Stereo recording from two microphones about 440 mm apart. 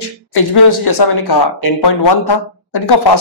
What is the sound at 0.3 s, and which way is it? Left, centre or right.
Speech, left.